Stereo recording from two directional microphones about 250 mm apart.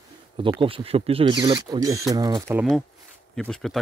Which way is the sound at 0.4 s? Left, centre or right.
Right.